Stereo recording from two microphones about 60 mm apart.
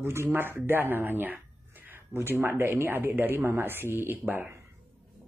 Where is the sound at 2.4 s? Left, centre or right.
Right.